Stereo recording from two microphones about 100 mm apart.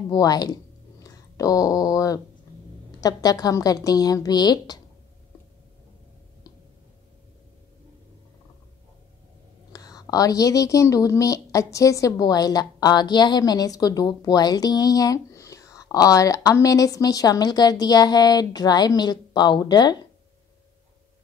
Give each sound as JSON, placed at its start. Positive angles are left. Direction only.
{"t": 0.1, "sound": "a woman's voice", "side_deg": 40}
{"t": 9.7, "sound": "a woman's voice", "side_deg": 40}